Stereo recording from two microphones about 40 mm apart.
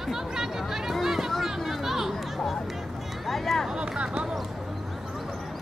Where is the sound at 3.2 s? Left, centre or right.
Centre.